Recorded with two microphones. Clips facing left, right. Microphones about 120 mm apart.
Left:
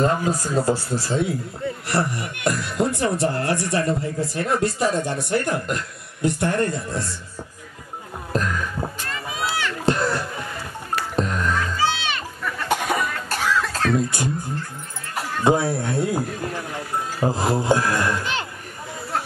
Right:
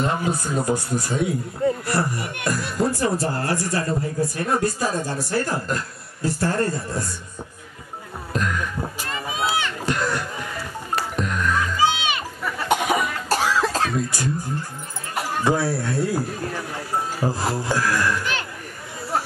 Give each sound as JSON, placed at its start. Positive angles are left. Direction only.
{"t": 0.0, "sound": "speech", "side_deg": 35}
{"t": 8.3, "sound": "heart sounds", "side_deg": 35}
{"t": 9.1, "sound": "rowboat", "side_deg": -20}
{"t": 9.8, "sound": "music", "side_deg": 30}
{"t": 11.8, "sound": "music", "side_deg": -15}
{"t": 13.3, "sound": "music", "side_deg": -40}
{"t": 13.9, "sound": "speech", "side_deg": 25}
{"t": 15.4, "sound": "speech", "side_deg": 20}